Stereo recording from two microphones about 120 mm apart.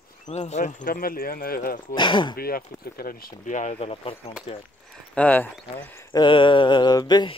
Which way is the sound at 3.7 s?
55° left (ahead or behind).